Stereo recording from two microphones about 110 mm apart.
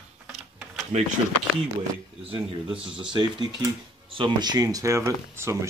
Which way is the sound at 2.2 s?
55° right (ahead or behind).